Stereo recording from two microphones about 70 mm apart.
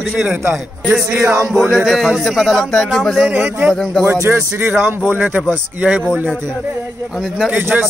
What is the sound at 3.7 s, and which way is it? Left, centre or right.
Speech, centre.